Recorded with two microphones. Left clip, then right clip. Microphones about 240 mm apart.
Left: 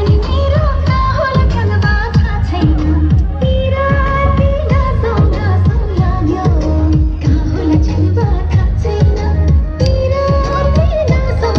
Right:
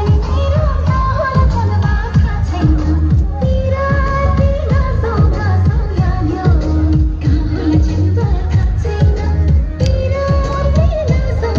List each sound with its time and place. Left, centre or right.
0.8 s music: left
6.4 s music: left
10.0 s music: left